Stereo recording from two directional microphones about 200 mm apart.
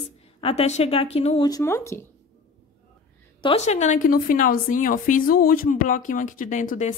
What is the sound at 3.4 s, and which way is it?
A woman's voice, 30° left (ahead or behind).